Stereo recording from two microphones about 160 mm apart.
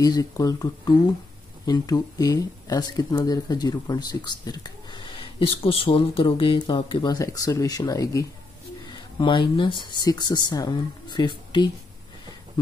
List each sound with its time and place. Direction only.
0.0 s speech: 20° left (ahead or behind)